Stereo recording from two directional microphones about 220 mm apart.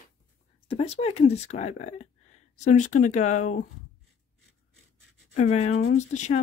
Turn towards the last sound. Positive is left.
turn(degrees=35)  # may be behind; listen again after turning